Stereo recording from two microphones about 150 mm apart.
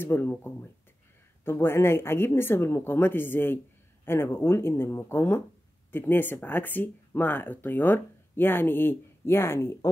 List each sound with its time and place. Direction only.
0.0 s speech: 15° left (ahead or behind)